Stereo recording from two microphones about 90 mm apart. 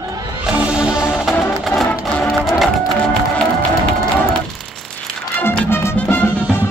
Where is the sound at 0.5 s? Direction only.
10° right (ahead or behind).